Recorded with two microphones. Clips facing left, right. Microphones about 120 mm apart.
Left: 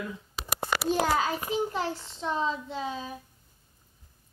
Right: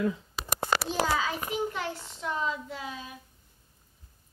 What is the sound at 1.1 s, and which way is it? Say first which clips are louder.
A child's voice: left 2 dB; 35° left (ahead or behind).